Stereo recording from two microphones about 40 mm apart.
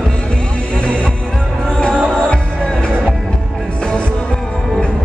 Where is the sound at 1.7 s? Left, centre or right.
Left.